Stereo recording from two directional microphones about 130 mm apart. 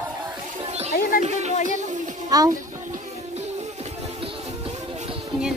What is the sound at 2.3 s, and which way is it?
Speech, 30° right (ahead or behind).